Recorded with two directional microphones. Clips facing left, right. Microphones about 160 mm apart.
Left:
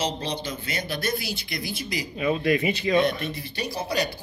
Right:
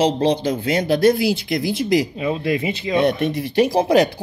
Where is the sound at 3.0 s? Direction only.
75° right (ahead or behind); by 4.1 s 90° right.